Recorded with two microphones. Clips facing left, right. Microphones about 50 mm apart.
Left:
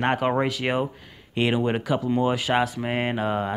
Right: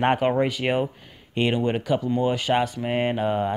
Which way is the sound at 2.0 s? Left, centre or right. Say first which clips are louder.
Left 3 dB; centre.